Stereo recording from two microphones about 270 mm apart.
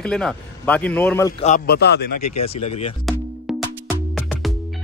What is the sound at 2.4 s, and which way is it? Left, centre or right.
Speech, left.